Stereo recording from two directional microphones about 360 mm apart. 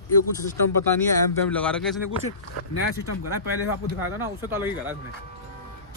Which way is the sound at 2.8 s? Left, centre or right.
Left.